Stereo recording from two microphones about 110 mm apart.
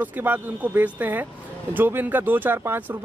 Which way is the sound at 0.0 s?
15° right (ahead or behind).